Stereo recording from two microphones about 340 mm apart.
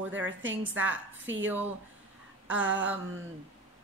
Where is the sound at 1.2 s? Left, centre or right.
Right.